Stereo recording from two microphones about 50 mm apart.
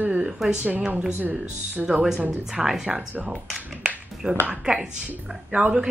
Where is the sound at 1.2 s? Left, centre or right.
Right.